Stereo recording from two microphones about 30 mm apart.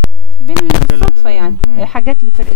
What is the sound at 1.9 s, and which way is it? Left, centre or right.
Speech, centre.